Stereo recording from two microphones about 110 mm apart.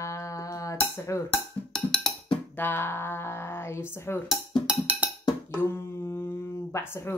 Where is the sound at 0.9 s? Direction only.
25° left (ahead or behind).